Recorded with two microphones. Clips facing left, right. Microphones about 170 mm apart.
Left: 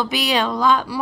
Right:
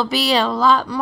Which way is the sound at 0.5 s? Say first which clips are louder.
Right 2 dB; 10° left (ahead or behind).